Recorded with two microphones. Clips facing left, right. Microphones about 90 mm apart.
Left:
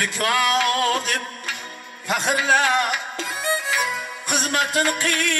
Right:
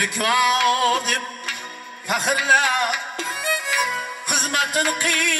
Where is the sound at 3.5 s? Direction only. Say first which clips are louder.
Left 2 dB; 25° left (ahead or behind).